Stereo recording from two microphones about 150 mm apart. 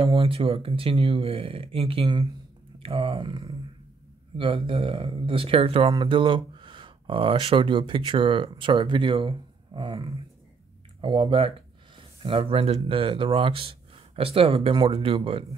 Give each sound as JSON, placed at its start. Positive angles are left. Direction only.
{"t": 0.0, "sound": "speech", "side_deg": -35}